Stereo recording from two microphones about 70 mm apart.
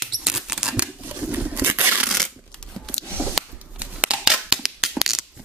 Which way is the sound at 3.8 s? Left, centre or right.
Centre.